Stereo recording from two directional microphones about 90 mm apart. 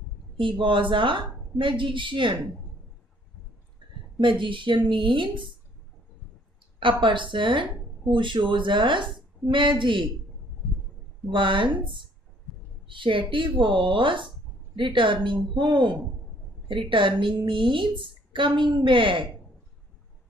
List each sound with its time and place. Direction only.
0.4 s a woman's voice: 70° right (ahead or behind)
4.2 s a woman's voice: 65° right (ahead or behind)
6.8 s a woman's voice: 65° right (ahead or behind)
11.2 s a woman's voice: 65° right (ahead or behind)